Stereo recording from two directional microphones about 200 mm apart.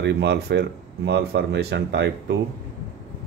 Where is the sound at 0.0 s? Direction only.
60° right (ahead or behind).